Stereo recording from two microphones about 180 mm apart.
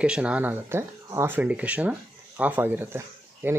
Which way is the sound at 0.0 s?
5° right (ahead or behind).